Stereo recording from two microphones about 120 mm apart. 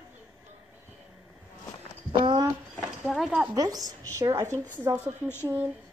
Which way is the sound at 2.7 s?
5° right (ahead or behind).